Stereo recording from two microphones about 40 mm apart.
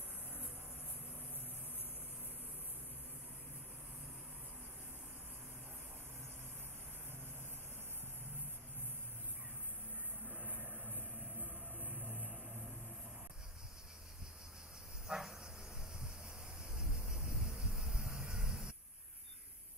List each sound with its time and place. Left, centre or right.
10.2 s vehicle: right
12.0 s vehicle: right
15.0 s cricket: centre
16.6 s thunder: right
17.3 s a sound: centre